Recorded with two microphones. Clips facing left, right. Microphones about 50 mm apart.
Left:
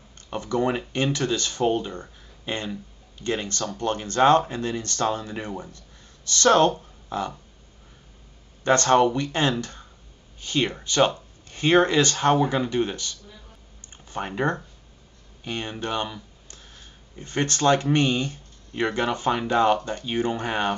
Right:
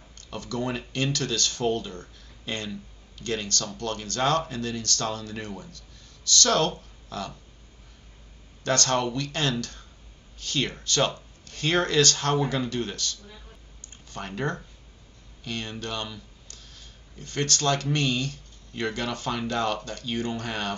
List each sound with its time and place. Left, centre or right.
0.3 s speech: left
8.6 s speech: left